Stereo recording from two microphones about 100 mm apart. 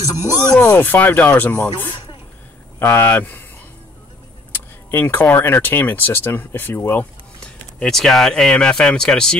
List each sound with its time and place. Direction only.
0.0 s speech: 35° left (ahead or behind)
0.7 s speech: 15° left (ahead or behind)
4.5 s speech: 20° left (ahead or behind)
7.8 s speech: 5° left (ahead or behind)